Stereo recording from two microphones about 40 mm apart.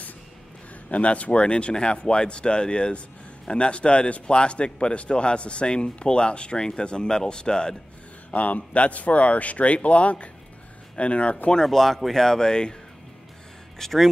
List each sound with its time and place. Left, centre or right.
0.8 s a man's voice: left
8.3 s a man's voice: left
11.5 s speech: centre
12.4 s a man's voice: centre
13.7 s speech: centre